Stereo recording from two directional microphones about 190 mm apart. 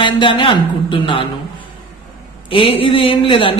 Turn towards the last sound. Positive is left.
turn(degrees=30)  # may be behind; listen again after turning